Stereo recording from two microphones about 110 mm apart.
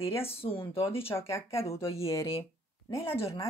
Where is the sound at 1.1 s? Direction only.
25° left (ahead or behind).